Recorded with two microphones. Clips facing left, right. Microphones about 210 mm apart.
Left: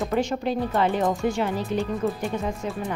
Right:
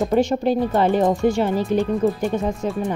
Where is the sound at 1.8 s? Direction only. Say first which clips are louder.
Right 6 dB; centre (ahead or behind).